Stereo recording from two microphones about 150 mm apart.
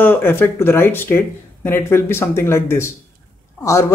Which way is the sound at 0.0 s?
15° left (ahead or behind).